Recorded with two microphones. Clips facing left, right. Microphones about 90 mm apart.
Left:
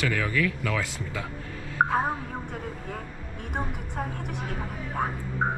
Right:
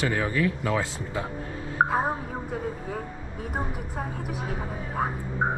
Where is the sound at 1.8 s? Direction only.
5° right (ahead or behind).